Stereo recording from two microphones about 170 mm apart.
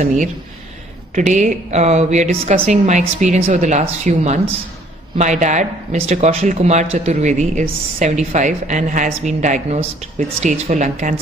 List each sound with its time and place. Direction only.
1.1 s speech: 45° right (ahead or behind)